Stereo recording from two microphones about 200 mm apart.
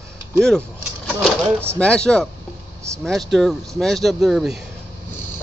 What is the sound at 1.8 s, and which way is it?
Speech, 5° left (ahead or behind).